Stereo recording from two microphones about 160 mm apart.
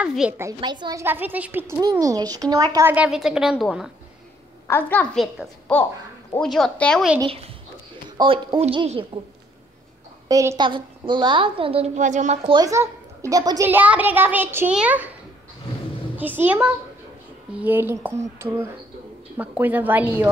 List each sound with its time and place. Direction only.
0.0 s a woman's voice: 5° right (ahead or behind)
0.6 s speech: 30° right (ahead or behind)
1.0 s a child's voice: 10° right (ahead or behind)
2.9 s a woman's voice: 5° right (ahead or behind)
4.6 s a woman's voice: 15° left (ahead or behind)
8.2 s a woman's voice: 30° right (ahead or behind)
10.2 s a woman's voice: 20° right (ahead or behind); by 12.4 s 50° right (ahead or behind)
12.4 s a woman's voice: 25° right (ahead or behind)
13.7 s a child's voice: 10° right (ahead or behind)
16.2 s a child's voice: 10° right (ahead or behind)